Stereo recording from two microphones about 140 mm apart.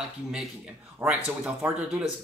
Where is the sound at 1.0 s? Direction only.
20° right (ahead or behind).